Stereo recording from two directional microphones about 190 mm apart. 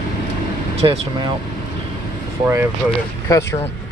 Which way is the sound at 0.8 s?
30° right (ahead or behind).